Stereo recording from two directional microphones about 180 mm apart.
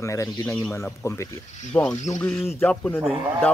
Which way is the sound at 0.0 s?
15° left (ahead or behind).